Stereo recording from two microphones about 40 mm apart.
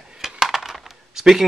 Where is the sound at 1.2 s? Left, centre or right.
Centre.